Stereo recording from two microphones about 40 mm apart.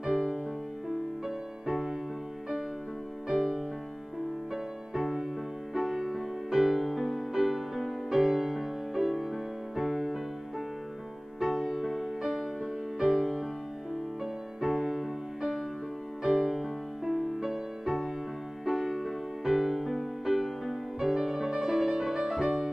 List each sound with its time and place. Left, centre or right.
0.0 s music: centre
3.3 s music: centre
4.9 s music: centre
11.3 s music: centre